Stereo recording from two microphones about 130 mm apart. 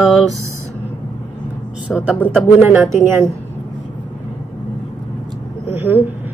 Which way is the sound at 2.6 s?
20° right (ahead or behind).